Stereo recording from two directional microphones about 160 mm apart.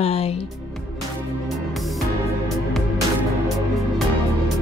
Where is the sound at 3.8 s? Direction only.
Centre (ahead or behind).